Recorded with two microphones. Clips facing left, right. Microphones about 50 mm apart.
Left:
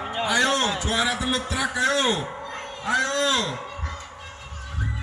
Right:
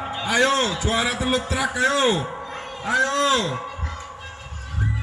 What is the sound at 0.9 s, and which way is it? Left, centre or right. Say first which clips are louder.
Heart sounds: right 2 dB; right.